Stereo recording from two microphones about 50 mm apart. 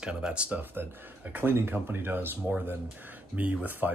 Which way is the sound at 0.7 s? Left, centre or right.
Right.